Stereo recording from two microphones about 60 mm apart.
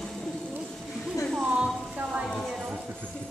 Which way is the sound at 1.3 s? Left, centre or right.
Centre.